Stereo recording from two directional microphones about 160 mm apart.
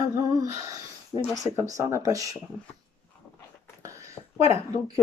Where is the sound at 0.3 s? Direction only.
20° right (ahead or behind).